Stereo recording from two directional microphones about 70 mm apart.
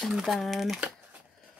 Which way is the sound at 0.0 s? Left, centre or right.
Centre.